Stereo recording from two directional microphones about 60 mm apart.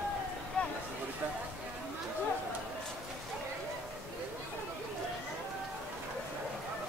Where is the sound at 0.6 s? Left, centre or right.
Centre.